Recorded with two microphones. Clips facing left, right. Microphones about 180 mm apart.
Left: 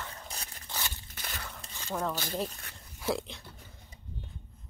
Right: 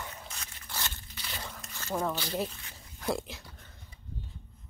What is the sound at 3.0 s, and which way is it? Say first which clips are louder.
Speech: even; centre (ahead or behind).